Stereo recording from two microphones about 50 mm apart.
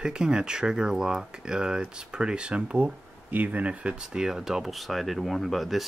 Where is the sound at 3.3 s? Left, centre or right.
Right.